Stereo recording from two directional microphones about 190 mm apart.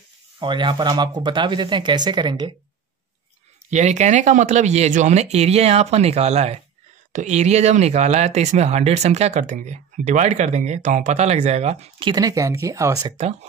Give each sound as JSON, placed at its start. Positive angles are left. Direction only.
{"t": 0.4, "sound": "speech", "side_deg": -25}
{"t": 3.7, "sound": "speech", "side_deg": -40}